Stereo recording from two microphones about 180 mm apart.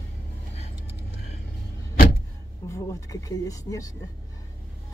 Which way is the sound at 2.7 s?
15° left (ahead or behind).